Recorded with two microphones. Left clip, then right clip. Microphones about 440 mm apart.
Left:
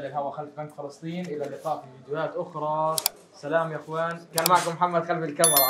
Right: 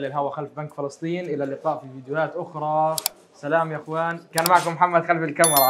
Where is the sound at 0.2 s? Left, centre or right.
Right.